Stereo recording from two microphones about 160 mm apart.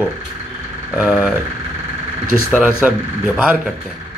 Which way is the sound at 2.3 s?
5° right (ahead or behind).